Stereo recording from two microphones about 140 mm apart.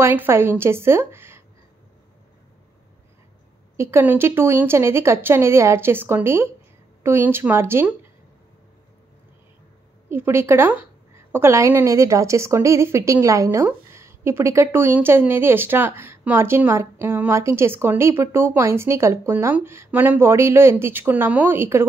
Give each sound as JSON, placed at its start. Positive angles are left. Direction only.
{"t": 0.0, "sound": "a woman's voice", "side_deg": -15}
{"t": 3.7, "sound": "a woman's voice", "side_deg": -15}
{"t": 10.0, "sound": "a woman's voice", "side_deg": -15}